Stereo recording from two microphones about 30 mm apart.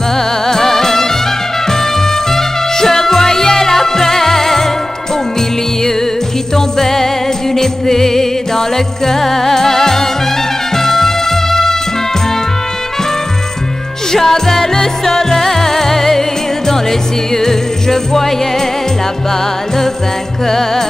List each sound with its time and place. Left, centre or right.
0.1 s music: centre
6.5 s music: centre
14.1 s music: centre
20.4 s music: centre